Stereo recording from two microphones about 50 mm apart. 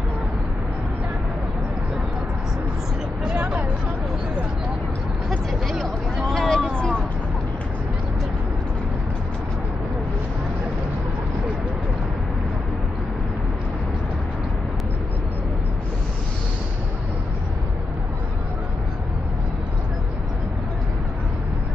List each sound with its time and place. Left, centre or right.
3.3 s hubbub: centre
5.5 s a sound: centre
6.2 s vehicle: centre
6.7 s vehicle: centre